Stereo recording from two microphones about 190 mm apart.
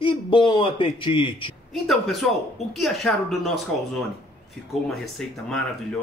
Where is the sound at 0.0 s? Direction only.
25° left (ahead or behind).